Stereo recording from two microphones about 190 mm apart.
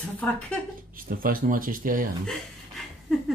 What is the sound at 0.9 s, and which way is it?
Speech, 50° right (ahead or behind).